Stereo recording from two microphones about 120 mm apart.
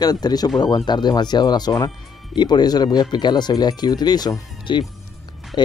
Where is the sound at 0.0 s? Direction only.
35° left (ahead or behind).